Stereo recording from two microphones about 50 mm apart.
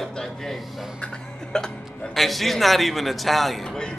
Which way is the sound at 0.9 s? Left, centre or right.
Centre.